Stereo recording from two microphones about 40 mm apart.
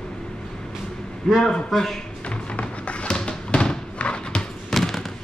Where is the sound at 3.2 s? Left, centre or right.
Centre.